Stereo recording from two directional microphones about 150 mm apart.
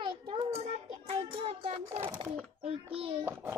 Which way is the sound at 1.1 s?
40° right (ahead or behind).